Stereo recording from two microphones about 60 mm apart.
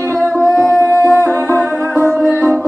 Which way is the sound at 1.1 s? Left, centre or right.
Right.